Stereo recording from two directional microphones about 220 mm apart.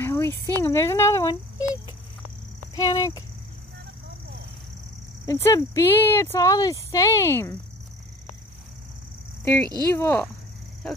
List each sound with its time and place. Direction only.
0.0 s speech: 10° left (ahead or behind)
5.2 s speech: 15° left (ahead or behind)
9.9 s speech: 10° left (ahead or behind)